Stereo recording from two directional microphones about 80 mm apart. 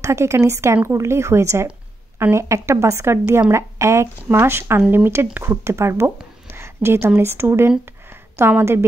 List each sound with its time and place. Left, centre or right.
0.0 s a woman's voice: right